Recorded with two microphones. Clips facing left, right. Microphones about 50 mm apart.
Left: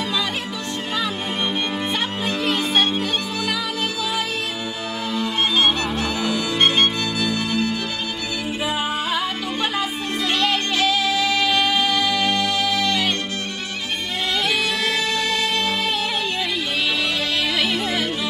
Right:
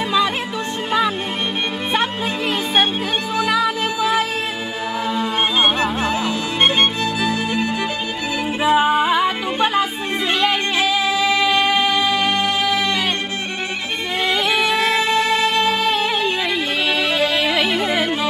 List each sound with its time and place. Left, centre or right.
1.9 s music: centre
8.7 s music: right
14.3 s music: right
17.2 s music: right